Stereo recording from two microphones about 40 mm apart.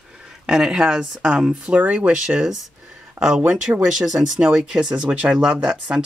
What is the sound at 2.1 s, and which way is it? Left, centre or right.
Speech, centre.